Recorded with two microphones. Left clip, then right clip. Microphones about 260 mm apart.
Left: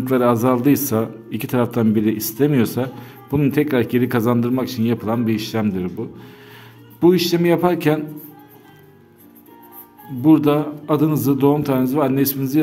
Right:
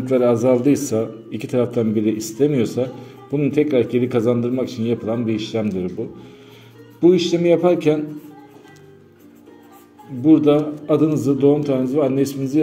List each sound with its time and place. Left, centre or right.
0.0 s a man's voice: left
7.0 s a man's voice: left
10.2 s a man's voice: left